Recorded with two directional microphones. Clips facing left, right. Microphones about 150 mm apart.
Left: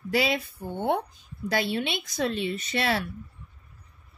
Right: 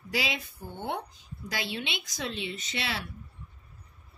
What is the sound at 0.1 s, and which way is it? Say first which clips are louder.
Speech: left 7 dB; 55° left (ahead or behind).